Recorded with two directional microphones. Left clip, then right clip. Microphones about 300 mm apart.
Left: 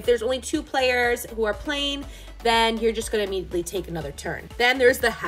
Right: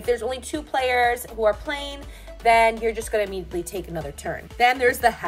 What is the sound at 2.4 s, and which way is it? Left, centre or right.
Speech, left.